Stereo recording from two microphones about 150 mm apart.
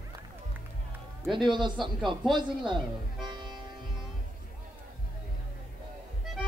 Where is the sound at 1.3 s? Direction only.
30° right (ahead or behind).